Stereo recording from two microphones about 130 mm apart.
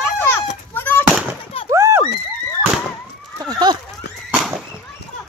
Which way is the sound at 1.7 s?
20° right (ahead or behind).